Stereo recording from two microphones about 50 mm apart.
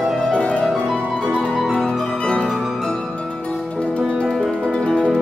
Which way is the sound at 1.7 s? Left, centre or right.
Centre.